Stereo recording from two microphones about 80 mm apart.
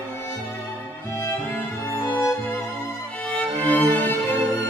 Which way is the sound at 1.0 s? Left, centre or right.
Left.